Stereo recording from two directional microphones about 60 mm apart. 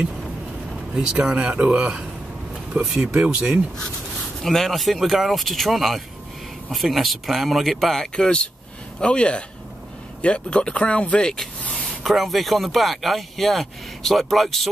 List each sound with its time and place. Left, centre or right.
1.2 s a man's voice: centre
4.4 s speech: centre
12.0 s speech: centre